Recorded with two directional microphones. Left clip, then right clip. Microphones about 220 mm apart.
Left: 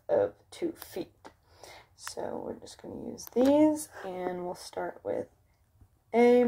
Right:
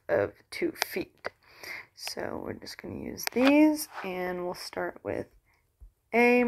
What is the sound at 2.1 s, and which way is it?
Speech, 35° right (ahead or behind).